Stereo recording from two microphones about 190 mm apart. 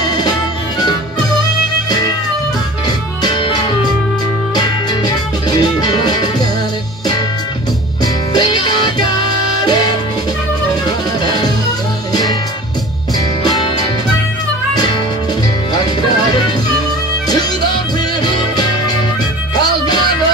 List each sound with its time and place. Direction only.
1.9 s music: 20° left (ahead or behind)
3.2 s music: 25° left (ahead or behind)
8.0 s music: 20° left (ahead or behind)
11.2 s music: 20° left (ahead or behind)
13.5 s music: 20° left (ahead or behind)
15.7 s music: 20° left (ahead or behind)
18.2 s music: 20° left (ahead or behind)